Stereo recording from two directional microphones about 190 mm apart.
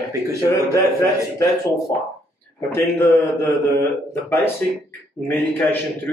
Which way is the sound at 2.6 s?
15° left (ahead or behind).